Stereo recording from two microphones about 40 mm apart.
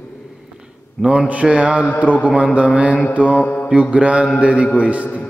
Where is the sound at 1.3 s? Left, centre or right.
Right.